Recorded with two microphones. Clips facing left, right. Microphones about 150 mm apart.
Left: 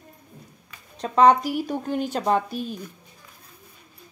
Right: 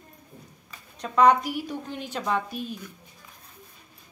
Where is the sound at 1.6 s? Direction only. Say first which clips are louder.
Left 8 dB; 45° left (ahead or behind).